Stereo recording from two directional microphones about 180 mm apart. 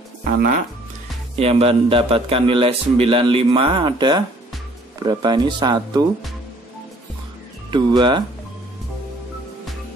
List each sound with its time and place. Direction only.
0.2 s speech: 50° right (ahead or behind)
1.3 s a man's voice: 35° right (ahead or behind)
7.7 s speech: 25° right (ahead or behind)